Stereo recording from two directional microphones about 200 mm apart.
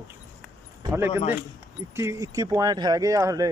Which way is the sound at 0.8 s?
10° right (ahead or behind).